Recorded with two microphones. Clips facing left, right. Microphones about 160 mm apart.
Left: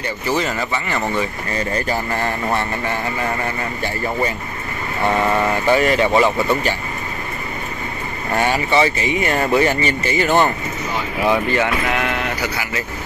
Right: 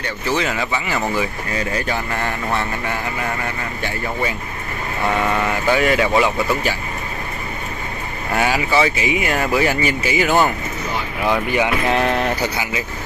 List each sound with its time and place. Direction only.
0.0 s speech: centre (ahead or behind)
5.7 s speech: centre (ahead or behind)
8.4 s speech: 5° right (ahead or behind)
11.9 s a sound: 35° right (ahead or behind)